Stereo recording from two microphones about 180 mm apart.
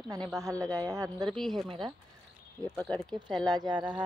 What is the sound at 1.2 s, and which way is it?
Speech, centre (ahead or behind).